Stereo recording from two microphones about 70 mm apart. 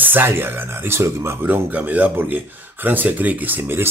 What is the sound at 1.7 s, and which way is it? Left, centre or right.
Speech, right.